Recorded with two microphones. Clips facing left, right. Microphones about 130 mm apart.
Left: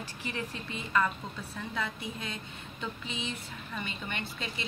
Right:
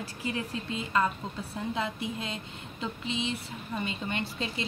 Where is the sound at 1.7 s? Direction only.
25° right (ahead or behind).